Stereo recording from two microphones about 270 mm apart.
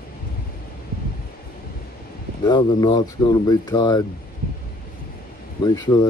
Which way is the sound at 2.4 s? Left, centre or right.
Centre.